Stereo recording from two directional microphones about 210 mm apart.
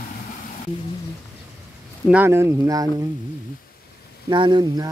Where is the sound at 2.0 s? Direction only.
10° right (ahead or behind).